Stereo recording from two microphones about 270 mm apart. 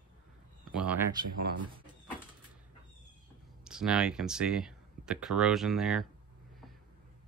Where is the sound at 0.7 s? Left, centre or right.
Centre.